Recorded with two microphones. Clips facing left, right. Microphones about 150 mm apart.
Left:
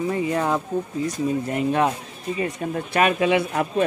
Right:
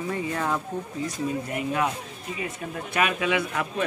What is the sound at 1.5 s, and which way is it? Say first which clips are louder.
Speech: left 6 dB; 35° left (ahead or behind).